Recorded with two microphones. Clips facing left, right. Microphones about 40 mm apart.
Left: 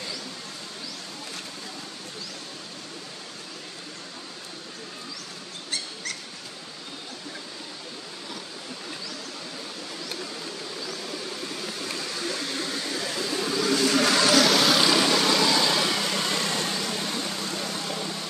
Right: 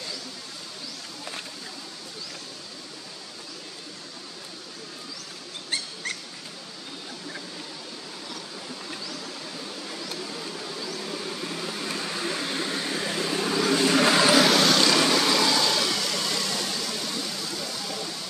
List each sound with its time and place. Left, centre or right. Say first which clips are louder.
12.0 s vehicle: right 1 dB; right
14.5 s vehicle: even; centre; by 17.9 s left